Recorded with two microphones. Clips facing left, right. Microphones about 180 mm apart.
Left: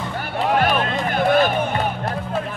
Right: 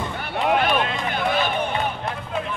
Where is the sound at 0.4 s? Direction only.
45° left (ahead or behind).